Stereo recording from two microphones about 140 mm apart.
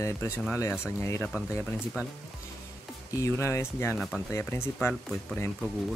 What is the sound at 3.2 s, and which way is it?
Speech, 20° left (ahead or behind).